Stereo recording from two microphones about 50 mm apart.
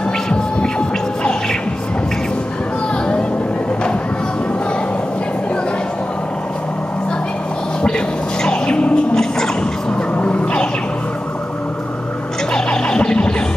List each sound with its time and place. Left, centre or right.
0.3 s music: centre
8.5 s music: left
10.1 s vehicle: left
12.5 s neigh: centre